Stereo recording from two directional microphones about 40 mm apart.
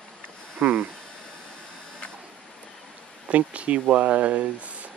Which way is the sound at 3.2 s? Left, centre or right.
Right.